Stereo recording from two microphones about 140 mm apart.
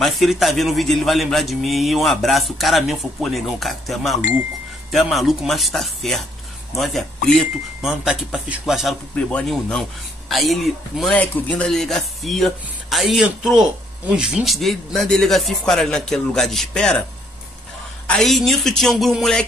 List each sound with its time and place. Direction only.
0.0 s a man's voice: centre (ahead or behind)
18.0 s a man's voice: 5° left (ahead or behind)